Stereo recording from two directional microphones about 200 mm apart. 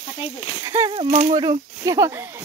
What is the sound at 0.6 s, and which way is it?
Speech, 15° right (ahead or behind).